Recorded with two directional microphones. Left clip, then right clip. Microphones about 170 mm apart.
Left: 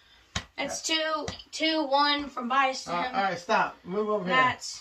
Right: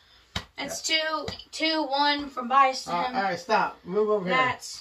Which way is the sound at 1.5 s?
5° left (ahead or behind).